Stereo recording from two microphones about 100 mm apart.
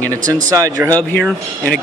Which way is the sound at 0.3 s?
35° right (ahead or behind).